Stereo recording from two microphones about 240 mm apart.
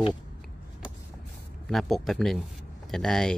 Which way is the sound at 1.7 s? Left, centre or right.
Centre.